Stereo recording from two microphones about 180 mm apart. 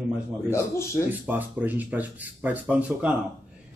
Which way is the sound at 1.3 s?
10° right (ahead or behind).